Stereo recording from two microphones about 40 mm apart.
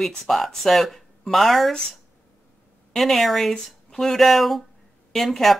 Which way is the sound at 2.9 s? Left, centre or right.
Centre.